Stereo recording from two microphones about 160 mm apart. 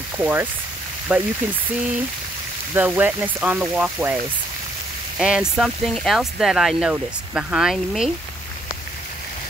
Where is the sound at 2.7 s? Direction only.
10° right (ahead or behind).